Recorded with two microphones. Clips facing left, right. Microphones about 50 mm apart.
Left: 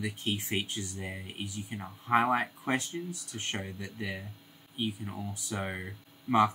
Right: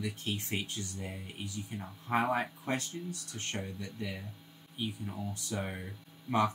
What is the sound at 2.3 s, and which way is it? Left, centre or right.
Speech, left.